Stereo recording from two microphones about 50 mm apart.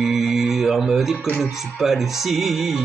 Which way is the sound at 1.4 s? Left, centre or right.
Centre.